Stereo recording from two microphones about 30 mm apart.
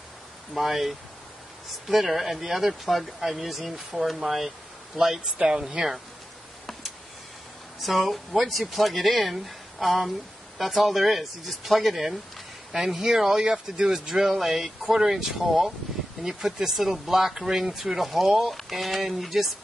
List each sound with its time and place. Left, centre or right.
0.6 s speech: centre
7.8 s speech: centre
12.7 s speech: centre